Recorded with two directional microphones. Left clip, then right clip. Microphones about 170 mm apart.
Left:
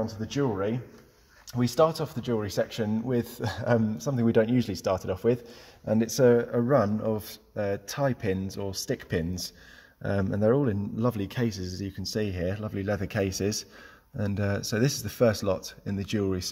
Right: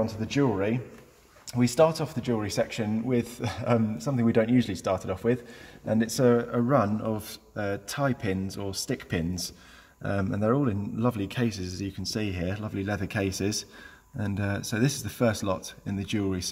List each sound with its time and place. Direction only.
0.0 s speech: 15° left (ahead or behind)
1.5 s a man's voice: 35° left (ahead or behind)